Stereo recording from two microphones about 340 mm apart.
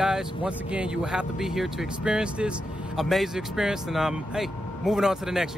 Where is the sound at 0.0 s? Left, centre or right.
Centre.